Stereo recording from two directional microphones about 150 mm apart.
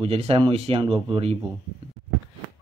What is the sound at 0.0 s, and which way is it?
Speech, 40° right (ahead or behind).